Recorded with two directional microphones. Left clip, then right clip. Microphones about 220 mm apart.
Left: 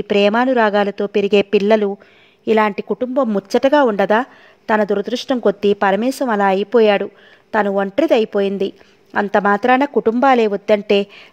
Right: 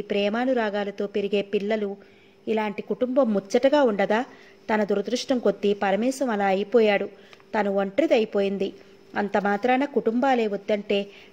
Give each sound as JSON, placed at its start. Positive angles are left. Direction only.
{"t": 0.0, "sound": "a woman's voice", "side_deg": 35}
{"t": 3.0, "sound": "a woman's voice", "side_deg": 25}